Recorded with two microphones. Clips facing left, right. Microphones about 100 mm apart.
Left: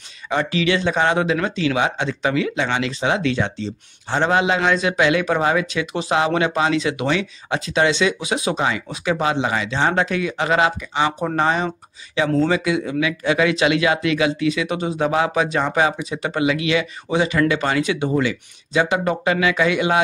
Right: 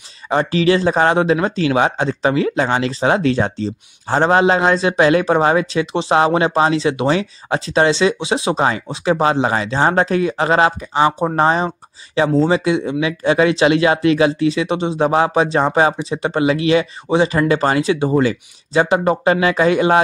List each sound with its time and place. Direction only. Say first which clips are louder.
0.3 s speech: right 5 dB; 35° right (ahead or behind)